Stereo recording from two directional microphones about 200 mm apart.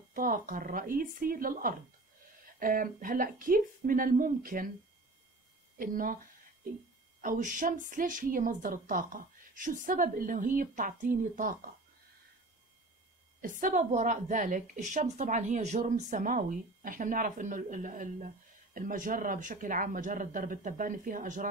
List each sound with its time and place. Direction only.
0.1 s speech: 45° right (ahead or behind)
5.8 s speech: 45° right (ahead or behind)
7.2 s a woman's voice: 40° right (ahead or behind)
13.4 s a woman's voice: 40° right (ahead or behind)